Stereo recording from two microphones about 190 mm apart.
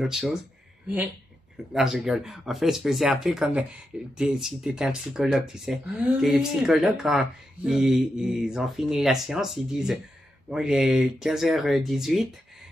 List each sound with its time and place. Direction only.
0.0 s speech: centre (ahead or behind)
1.7 s speech: centre (ahead or behind)